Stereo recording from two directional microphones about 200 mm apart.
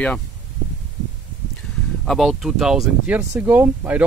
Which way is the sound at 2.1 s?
Centre (ahead or behind).